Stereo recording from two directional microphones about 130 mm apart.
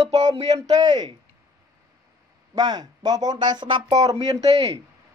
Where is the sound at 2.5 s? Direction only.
30° right (ahead or behind).